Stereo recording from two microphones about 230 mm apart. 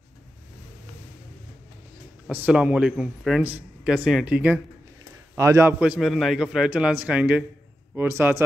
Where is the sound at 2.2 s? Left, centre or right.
Centre.